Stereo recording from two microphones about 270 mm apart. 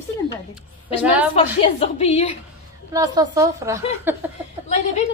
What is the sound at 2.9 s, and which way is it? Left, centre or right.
A woman's voice, centre.